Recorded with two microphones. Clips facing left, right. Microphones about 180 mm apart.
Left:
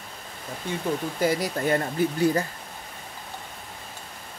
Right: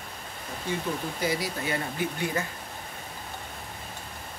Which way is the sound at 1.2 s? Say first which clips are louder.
Left 6 dB; 50° left (ahead or behind).